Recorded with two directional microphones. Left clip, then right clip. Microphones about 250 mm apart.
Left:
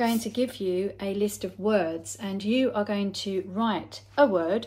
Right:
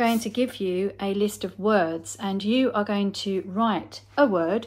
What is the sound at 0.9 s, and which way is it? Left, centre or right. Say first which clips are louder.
Speech: right 3 dB; right.